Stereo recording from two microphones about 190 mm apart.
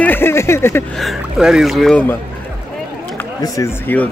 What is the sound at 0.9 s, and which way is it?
Speech, centre (ahead or behind).